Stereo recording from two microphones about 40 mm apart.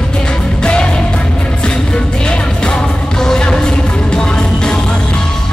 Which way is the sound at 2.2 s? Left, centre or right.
Left.